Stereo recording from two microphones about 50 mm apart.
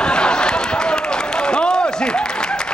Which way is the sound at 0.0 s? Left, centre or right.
Centre.